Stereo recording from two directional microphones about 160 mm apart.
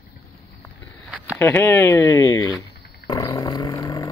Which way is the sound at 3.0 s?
25° left (ahead or behind).